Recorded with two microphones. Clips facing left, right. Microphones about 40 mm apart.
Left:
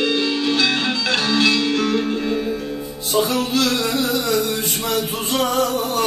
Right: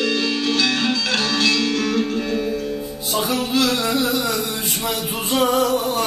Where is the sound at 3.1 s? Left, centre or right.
Centre.